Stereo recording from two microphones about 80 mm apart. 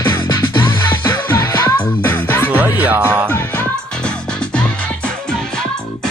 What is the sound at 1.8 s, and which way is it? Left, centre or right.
Music, left.